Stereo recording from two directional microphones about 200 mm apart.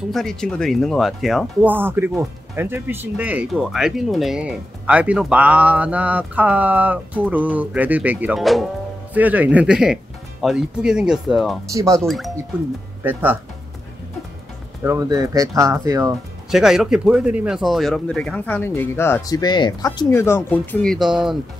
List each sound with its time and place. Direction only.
0.1 s speech: centre (ahead or behind)
11.7 s speech: 15° right (ahead or behind)
14.8 s speech: 15° right (ahead or behind)
16.4 s speech: centre (ahead or behind)